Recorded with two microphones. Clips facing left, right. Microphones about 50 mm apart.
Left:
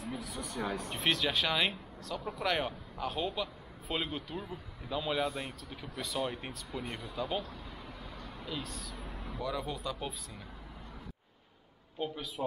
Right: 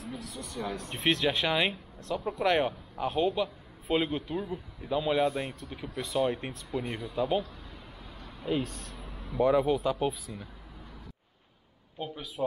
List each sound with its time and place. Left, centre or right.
0.0 s speech: centre
2.4 s speech: centre
8.5 s speech: right
8.9 s a sound: centre
9.4 s speech: right
10.0 s speech: centre
12.0 s speech: centre